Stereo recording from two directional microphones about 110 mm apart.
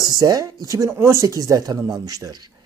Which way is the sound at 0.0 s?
35° right (ahead or behind).